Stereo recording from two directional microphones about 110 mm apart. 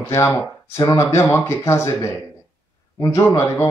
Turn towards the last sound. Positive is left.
turn(degrees=25)  # may be behind; listen again after turning